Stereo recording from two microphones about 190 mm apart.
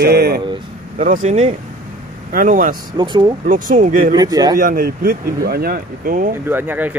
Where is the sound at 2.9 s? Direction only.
25° right (ahead or behind).